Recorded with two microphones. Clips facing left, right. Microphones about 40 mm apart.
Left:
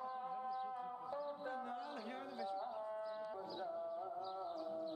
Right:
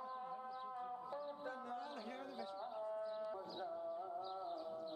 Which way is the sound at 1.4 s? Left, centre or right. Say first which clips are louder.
Left 2 dB; left.